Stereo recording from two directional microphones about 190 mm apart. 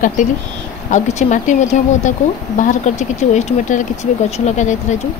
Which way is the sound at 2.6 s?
40° left (ahead or behind).